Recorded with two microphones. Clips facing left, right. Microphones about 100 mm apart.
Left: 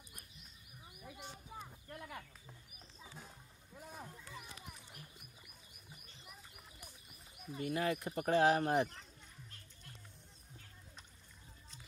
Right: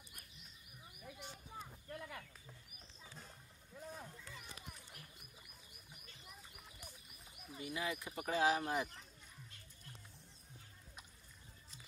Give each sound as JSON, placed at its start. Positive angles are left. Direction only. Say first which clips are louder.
{"t": 1.0, "sound": "a sound", "louder": "left 2 dB", "side_deg": 15}
{"t": 3.0, "sound": "music", "louder": "left 3 dB", "side_deg": 10}
{"t": 7.5, "sound": "speech", "louder": "left 6 dB", "side_deg": 55}